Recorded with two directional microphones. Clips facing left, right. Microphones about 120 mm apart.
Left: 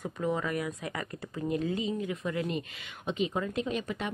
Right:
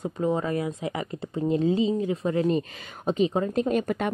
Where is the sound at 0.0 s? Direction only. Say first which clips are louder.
Right 5 dB; 30° right (ahead or behind).